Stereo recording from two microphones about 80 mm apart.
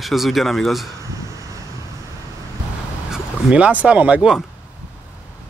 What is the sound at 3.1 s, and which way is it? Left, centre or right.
Speech, centre.